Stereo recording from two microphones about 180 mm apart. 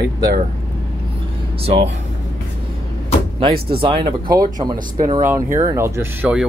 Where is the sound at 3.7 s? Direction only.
30° right (ahead or behind).